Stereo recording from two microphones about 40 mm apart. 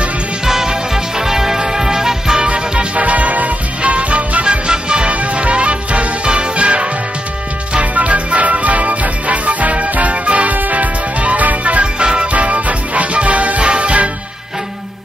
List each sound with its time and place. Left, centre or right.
0.5 s music: centre
2.4 s music: right
3.1 s music: right